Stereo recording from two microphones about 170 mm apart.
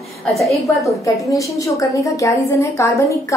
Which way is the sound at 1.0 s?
20° left (ahead or behind).